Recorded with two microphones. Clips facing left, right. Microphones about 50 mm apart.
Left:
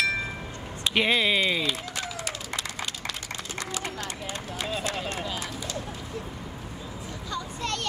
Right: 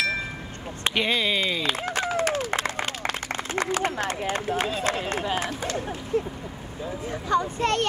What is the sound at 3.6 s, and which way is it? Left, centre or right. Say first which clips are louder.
Run: right 9 dB; right.